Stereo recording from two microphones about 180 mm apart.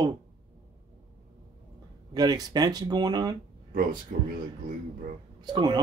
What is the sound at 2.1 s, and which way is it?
Speech, 20° right (ahead or behind).